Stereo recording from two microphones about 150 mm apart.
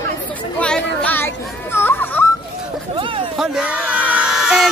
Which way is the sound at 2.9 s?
35° right (ahead or behind).